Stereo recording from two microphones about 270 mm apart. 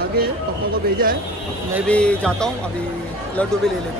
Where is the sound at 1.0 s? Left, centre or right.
Right.